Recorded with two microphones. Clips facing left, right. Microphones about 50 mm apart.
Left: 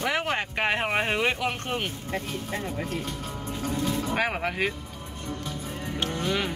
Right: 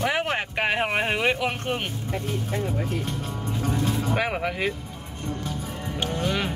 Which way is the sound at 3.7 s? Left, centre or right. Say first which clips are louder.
Right 1 dB; right.